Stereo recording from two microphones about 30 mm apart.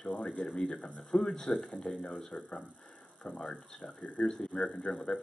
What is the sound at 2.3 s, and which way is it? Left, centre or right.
Speech, left.